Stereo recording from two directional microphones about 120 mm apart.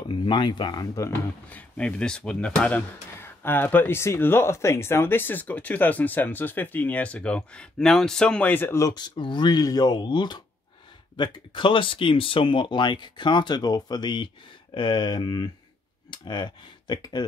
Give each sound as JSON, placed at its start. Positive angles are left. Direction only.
{"t": 0.1, "sound": "speech", "side_deg": 40}
{"t": 1.5, "sound": "speech", "side_deg": 10}
{"t": 8.8, "sound": "speech", "side_deg": 35}